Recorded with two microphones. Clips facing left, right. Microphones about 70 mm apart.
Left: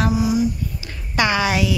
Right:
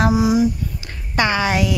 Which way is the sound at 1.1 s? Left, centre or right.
Right.